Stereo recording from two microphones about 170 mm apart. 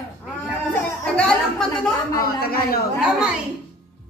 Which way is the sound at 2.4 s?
65° left (ahead or behind).